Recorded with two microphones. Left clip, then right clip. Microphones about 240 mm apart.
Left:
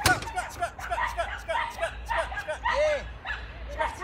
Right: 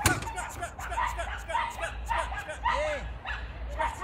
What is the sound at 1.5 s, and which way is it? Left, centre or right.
Hubbub, right.